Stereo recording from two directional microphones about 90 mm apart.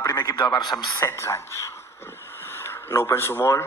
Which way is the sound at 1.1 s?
30° left (ahead or behind).